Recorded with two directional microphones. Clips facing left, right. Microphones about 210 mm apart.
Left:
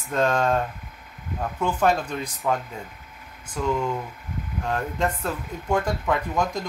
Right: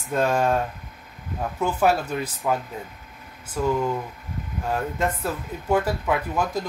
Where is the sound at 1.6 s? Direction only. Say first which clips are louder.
Right 1 dB; 5° right (ahead or behind).